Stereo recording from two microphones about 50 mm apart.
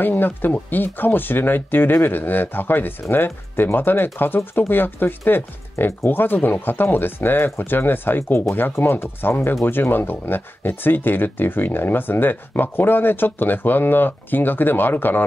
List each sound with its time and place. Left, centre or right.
0.0 s speech: left